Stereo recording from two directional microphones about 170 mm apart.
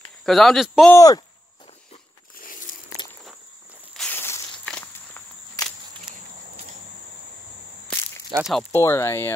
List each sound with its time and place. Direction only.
0.2 s speech: centre (ahead or behind)
0.9 s speech: 20° left (ahead or behind)
2.3 s a sound: 55° left (ahead or behind)
3.0 s walk: 25° left (ahead or behind)
3.9 s walk: 10° left (ahead or behind)
7.9 s a sound: 5° left (ahead or behind)
8.4 s speech: centre (ahead or behind)
8.7 s speech: 15° left (ahead or behind)